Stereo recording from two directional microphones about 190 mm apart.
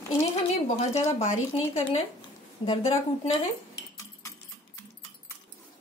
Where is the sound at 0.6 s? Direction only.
35° left (ahead or behind).